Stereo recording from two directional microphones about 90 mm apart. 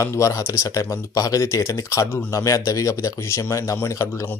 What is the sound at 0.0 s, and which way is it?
Speech, 35° left (ahead or behind).